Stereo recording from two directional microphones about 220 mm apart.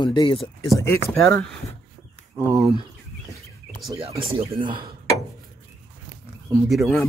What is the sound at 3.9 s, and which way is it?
Speech, 25° right (ahead or behind).